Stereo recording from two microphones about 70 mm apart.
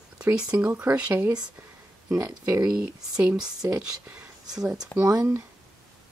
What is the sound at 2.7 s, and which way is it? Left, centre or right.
Speech, centre.